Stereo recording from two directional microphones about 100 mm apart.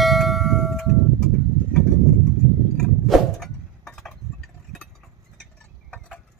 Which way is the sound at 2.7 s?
5° left (ahead or behind).